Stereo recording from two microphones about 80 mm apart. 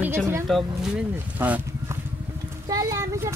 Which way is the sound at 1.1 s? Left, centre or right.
Right.